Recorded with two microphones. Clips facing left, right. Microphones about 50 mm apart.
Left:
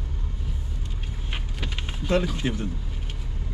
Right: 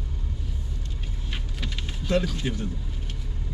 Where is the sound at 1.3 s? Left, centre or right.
Left.